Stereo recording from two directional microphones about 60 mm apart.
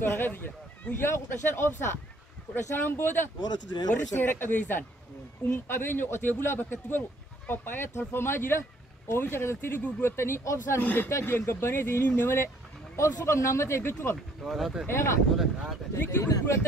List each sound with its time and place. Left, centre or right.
0.0 s speech: left
10.4 s speech: left
10.8 s speech: left
11.2 s speech: left
12.9 s speech: left
14.1 s speech: centre
14.9 s speech: left
15.3 s speech: centre
16.1 s speech: left